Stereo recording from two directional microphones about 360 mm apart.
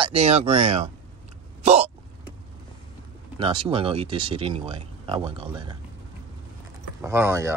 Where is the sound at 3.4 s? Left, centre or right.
Centre.